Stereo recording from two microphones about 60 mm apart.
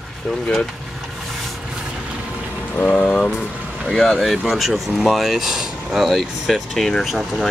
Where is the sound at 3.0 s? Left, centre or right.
Centre.